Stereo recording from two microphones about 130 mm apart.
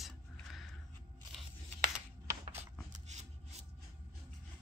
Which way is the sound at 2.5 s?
60° right (ahead or behind).